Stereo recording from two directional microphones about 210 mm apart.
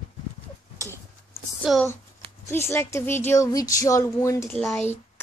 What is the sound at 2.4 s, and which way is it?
A woman's voice, 10° left (ahead or behind).